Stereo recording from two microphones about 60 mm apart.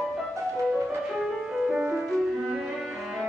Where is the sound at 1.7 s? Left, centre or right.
Centre.